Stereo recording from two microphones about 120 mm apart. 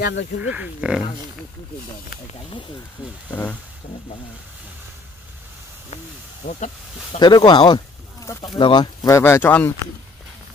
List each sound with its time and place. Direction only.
0.4 s speech: 10° right (ahead or behind)
3.0 s speech: 10° right (ahead or behind)
6.4 s speech: 90° left
7.2 s speech: 35° left (ahead or behind); by 9.8 s 15° left (ahead or behind)